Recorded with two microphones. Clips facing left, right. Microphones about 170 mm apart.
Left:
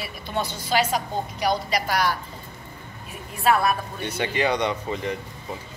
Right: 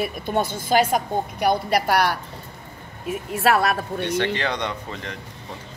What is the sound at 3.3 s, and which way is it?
Speech, 85° right.